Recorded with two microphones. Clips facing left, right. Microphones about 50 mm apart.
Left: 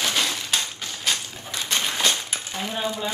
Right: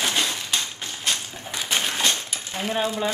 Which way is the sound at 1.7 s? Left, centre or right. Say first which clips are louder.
Even; right.